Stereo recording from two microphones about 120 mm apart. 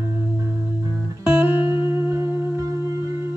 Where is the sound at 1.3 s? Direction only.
10° right (ahead or behind).